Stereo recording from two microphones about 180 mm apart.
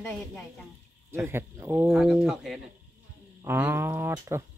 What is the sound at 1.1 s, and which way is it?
Speech, 15° right (ahead or behind).